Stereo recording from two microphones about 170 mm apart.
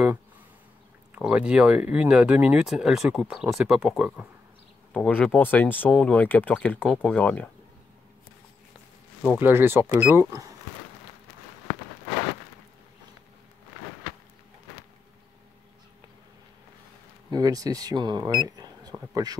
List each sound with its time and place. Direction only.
1.1 s speech: 5° right (ahead or behind)
9.4 s speech: 15° right (ahead or behind)
17.3 s speech: 20° right (ahead or behind)